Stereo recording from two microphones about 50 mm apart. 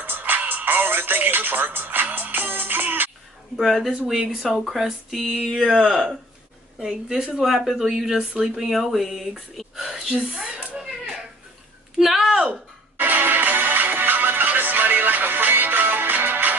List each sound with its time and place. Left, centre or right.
0.0 s music: right
3.5 s speech: centre
8.2 s speech: centre
8.5 s speech: centre
10.2 s a sound: centre
12.0 s a sound: centre
12.9 s music: right